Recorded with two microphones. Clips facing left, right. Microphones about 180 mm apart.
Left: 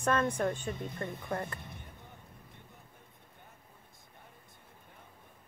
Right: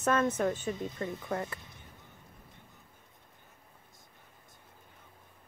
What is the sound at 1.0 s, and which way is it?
Speech, 55° left (ahead or behind).